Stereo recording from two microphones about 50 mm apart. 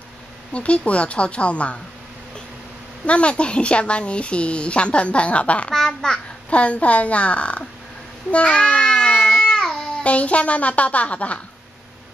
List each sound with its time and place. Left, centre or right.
0.5 s speech: left
3.1 s speech: left
5.7 s a child's voice: centre
6.5 s speech: left
8.3 s babbling: left
10.0 s speech: left